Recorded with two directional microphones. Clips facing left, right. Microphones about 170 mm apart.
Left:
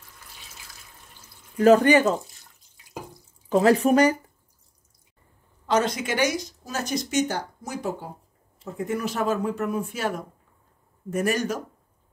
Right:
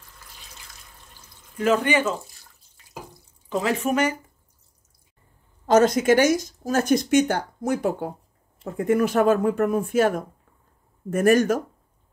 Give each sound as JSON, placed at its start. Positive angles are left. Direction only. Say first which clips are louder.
{"t": 1.6, "sound": "speech", "louder": "left 5 dB", "side_deg": 40}
{"t": 3.4, "sound": "speech", "louder": "left 5 dB", "side_deg": 40}
{"t": 5.7, "sound": "speech", "louder": "right 7 dB", "side_deg": -45}